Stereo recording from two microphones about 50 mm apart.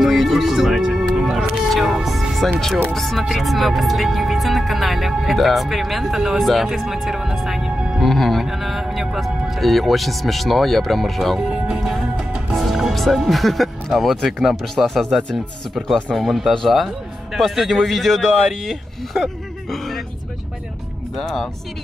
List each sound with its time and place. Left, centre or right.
0.0 s music: centre
2.9 s speech: centre
11.3 s speech: centre
11.8 s music: centre
12.9 s speech: centre
21.2 s speech: centre